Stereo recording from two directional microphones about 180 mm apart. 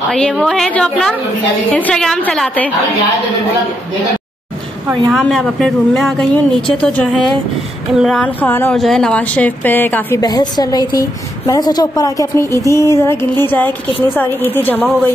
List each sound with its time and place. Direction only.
0.1 s speech: 5° left (ahead or behind)
5.1 s speech: centre (ahead or behind)
10.2 s a woman's voice: 20° left (ahead or behind)